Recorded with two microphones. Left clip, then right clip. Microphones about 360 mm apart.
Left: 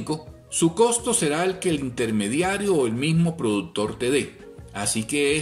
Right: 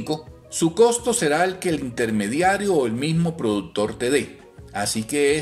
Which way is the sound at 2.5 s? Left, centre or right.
Right.